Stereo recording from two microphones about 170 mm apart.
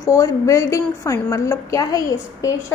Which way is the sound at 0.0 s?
20° left (ahead or behind).